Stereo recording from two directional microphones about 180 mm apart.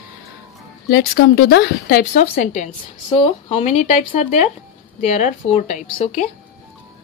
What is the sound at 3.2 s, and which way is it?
A woman's voice, 30° left (ahead or behind).